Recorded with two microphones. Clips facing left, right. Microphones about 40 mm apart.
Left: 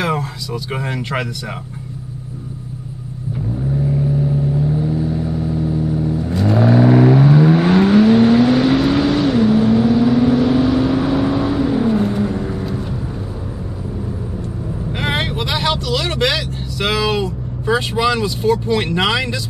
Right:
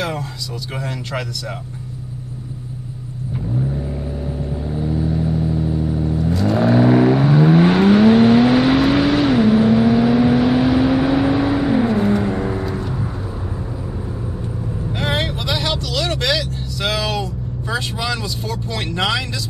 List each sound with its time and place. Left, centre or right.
0.0 s a sound: centre
0.7 s speech: left
3.5 s vehicle: centre
14.9 s vehicle: centre